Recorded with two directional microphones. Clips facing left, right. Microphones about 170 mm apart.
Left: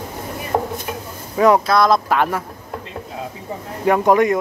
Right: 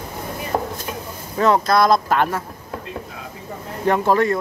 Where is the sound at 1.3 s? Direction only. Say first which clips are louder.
Left 3 dB; 10° left (ahead or behind).